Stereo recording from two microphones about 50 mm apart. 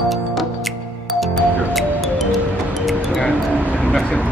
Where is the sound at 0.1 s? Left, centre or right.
Centre.